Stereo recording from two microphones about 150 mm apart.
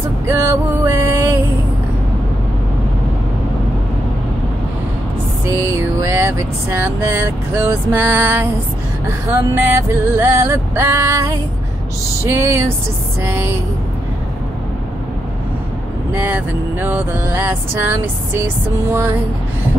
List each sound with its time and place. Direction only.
0.3 s music: 20° right (ahead or behind)
5.4 s a sound: 15° right (ahead or behind)
9.3 s male singing: 20° right (ahead or behind)
13.2 s vehicle: 15° right (ahead or behind)
16.1 s vehicle: 10° right (ahead or behind)